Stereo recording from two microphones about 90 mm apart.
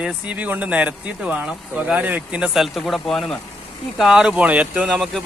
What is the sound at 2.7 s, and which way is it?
A man's voice, centre (ahead or behind).